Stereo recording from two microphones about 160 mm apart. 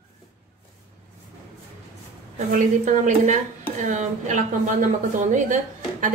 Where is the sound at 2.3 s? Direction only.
50° right (ahead or behind).